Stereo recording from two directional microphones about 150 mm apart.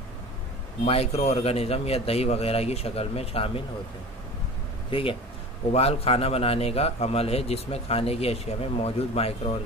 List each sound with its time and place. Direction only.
0.8 s a man's voice: 45° left (ahead or behind)
4.9 s a man's voice: 35° left (ahead or behind)